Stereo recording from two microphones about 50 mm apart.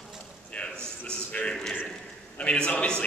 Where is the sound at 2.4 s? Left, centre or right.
Left.